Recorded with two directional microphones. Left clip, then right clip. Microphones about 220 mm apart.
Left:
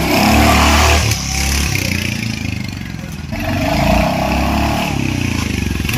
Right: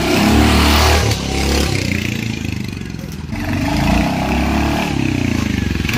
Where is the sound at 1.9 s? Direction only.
10° right (ahead or behind).